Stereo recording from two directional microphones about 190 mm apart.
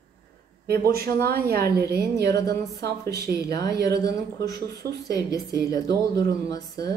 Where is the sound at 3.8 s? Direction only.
20° left (ahead or behind).